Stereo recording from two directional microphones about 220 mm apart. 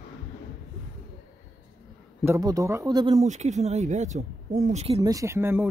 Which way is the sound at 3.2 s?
30° right (ahead or behind).